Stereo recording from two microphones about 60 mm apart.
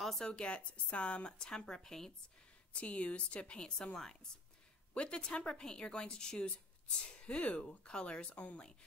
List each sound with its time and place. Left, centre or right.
0.0 s a woman's voice: centre